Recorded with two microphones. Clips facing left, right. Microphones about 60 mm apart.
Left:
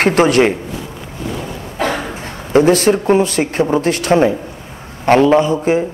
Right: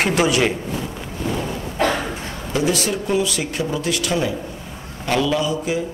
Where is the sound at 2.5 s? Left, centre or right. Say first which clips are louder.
Left 10 dB; left.